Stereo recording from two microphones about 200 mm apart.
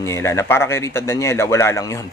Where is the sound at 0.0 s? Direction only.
15° left (ahead or behind).